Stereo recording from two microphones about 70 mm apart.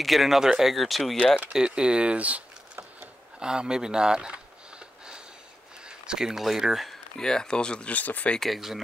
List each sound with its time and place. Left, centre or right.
0.0 s speech: centre
1.1 s speech: centre
1.5 s speech: centre
3.3 s a sound: centre
5.9 s speech: centre
7.2 s speech: centre
8.4 s speech: centre